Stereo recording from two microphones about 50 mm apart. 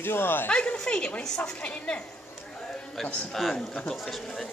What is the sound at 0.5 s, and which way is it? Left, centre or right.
A woman's voice, centre.